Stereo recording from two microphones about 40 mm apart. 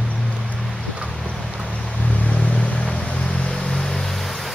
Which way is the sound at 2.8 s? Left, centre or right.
Left.